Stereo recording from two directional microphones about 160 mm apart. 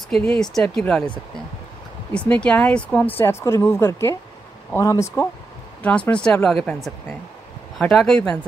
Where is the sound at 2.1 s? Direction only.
10° left (ahead or behind).